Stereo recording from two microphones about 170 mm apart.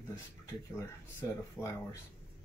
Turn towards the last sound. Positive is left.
turn(degrees=20)  # may be behind; listen again after turning